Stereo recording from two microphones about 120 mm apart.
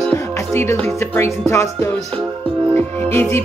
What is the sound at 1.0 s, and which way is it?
Speech, 25° left (ahead or behind).